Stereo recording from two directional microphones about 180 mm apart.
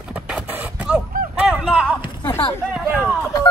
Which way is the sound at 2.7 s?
10° right (ahead or behind).